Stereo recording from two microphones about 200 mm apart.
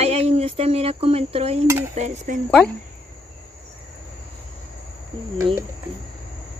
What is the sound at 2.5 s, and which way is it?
Speech, 5° left (ahead or behind).